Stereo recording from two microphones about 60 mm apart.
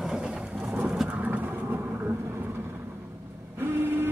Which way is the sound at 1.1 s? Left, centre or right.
Right.